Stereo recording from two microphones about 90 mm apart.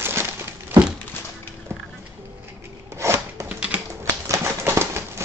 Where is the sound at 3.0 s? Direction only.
30° right (ahead or behind).